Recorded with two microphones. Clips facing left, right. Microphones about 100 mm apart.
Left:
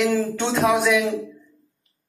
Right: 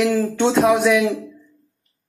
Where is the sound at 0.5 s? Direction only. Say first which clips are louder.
Right 2 dB; 5° right (ahead or behind).